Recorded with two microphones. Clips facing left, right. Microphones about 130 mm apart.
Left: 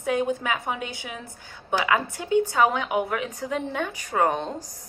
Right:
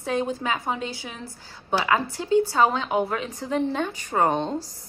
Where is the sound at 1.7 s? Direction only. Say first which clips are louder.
Right 1 dB; 30° right (ahead or behind).